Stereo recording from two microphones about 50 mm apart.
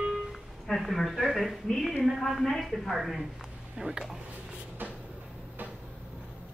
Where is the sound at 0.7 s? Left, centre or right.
Centre.